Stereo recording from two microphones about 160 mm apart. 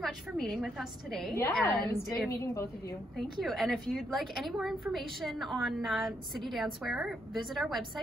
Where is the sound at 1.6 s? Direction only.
10° left (ahead or behind).